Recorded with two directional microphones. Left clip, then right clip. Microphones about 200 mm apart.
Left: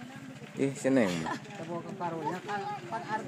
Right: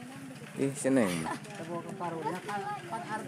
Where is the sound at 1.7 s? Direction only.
30° left (ahead or behind).